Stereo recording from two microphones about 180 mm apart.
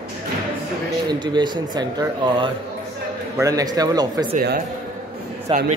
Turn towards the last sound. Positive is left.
turn(degrees=-30)  # may be behind; listen again after turning